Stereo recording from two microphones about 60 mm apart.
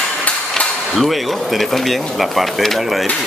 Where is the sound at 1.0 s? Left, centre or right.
Centre.